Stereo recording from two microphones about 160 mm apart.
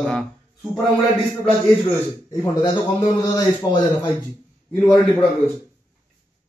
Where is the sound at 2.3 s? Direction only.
20° left (ahead or behind).